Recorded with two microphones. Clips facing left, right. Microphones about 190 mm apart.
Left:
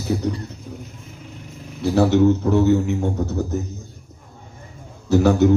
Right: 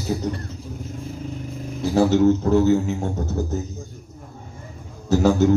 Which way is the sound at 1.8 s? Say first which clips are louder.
Left 1 dB; 60° left (ahead or behind).